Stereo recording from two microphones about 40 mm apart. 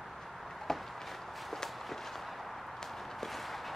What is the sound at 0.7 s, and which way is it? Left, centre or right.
Walk, centre.